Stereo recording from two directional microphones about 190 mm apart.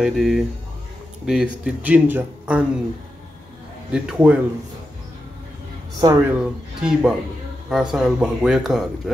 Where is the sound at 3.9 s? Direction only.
5° right (ahead or behind).